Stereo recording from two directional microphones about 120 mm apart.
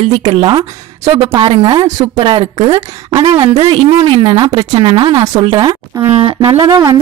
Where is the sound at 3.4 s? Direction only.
50° right (ahead or behind).